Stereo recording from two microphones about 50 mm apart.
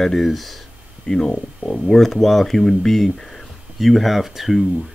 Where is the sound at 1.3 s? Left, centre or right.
Left.